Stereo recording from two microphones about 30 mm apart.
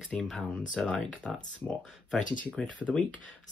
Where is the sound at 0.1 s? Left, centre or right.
Left.